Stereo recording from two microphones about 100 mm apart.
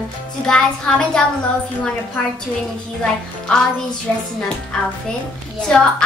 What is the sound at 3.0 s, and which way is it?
Music, 10° left (ahead or behind).